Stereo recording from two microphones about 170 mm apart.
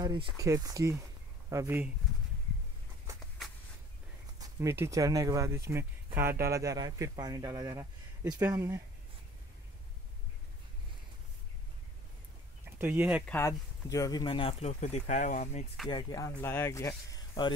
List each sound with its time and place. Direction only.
0.0 s speech: 25° right (ahead or behind)
3.1 s a sound: 20° right (ahead or behind)
4.4 s speech: 15° right (ahead or behind)
12.6 s speech: 15° right (ahead or behind)
13.2 s speech: 15° left (ahead or behind); by 15.6 s 45° left (ahead or behind)
15.9 s speech: 25° left (ahead or behind)